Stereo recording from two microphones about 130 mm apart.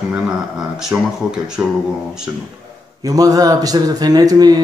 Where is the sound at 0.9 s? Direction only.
10° right (ahead or behind).